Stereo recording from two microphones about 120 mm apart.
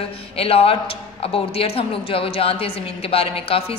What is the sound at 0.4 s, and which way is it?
A woman's voice, 50° left (ahead or behind).